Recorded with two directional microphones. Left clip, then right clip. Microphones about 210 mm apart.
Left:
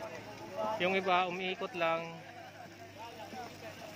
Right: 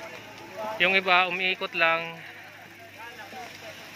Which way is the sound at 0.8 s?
5° right (ahead or behind).